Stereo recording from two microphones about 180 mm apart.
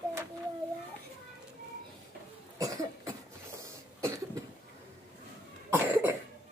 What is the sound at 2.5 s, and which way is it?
Cough, 20° right (ahead or behind).